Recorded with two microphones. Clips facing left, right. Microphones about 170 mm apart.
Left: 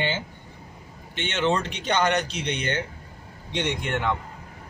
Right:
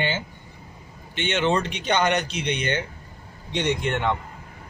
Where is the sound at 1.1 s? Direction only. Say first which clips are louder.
Right 4 dB; 65° right (ahead or behind).